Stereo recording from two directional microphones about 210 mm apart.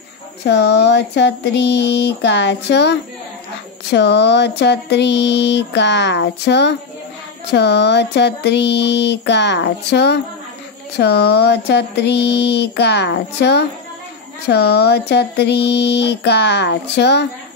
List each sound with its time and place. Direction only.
0.5 s speech: 50° left (ahead or behind)
3.9 s a sound: 55° left (ahead or behind)
7.5 s speech: 55° left (ahead or behind)